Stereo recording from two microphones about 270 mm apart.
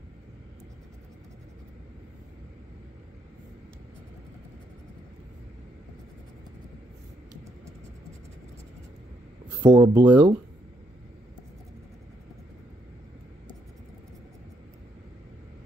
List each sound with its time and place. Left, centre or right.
9.6 s speech: centre